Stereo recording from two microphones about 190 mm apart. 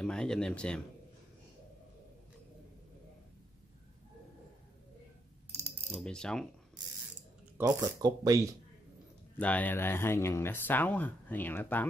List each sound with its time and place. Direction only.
0.0 s speech: 5° left (ahead or behind)
5.9 s speech: 5° left (ahead or behind)
7.6 s speech: 20° right (ahead or behind)
9.4 s speech: 10° left (ahead or behind)